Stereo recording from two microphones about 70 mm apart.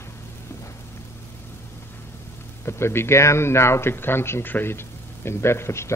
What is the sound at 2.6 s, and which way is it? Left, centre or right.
Speech, left.